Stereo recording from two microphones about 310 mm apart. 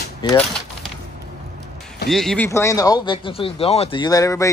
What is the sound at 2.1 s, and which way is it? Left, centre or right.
Speech, centre.